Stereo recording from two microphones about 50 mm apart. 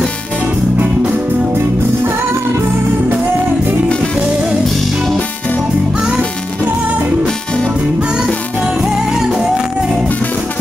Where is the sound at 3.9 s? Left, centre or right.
Centre.